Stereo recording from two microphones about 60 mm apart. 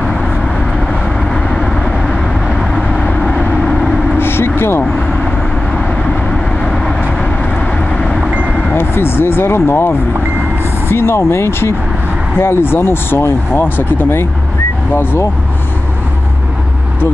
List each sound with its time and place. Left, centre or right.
1.3 s vehicle: centre
4.2 s vehicle: left
8.7 s vehicle: left
10.9 s speech: left